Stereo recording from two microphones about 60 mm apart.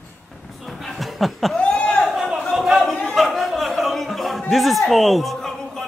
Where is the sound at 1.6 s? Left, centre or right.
Centre.